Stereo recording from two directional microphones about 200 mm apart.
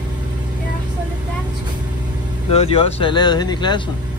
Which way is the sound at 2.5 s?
30° left (ahead or behind).